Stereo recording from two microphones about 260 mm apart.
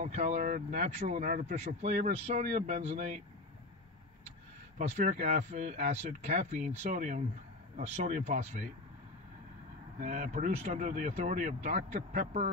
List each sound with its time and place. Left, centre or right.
0.0 s speech: right
4.7 s speech: right
9.9 s speech: right